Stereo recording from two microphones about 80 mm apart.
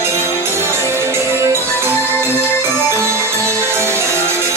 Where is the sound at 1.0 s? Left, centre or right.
Right.